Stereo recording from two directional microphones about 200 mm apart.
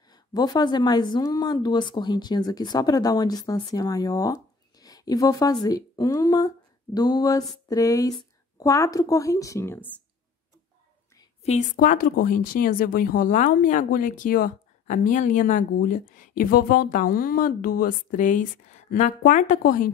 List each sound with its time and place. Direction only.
0.1 s speech: 20° left (ahead or behind)
11.4 s speech: 40° left (ahead or behind)